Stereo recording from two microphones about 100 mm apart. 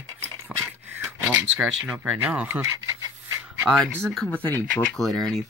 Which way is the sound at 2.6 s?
30° right (ahead or behind).